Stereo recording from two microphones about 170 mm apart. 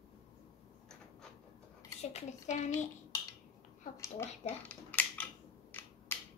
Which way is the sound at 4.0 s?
15° left (ahead or behind).